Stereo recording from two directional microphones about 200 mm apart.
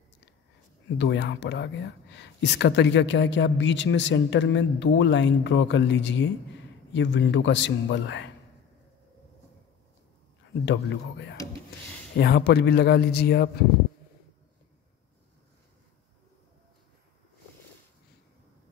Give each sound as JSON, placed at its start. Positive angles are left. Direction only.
{"t": 0.9, "sound": "speech", "side_deg": 60}
{"t": 10.6, "sound": "speech", "side_deg": 60}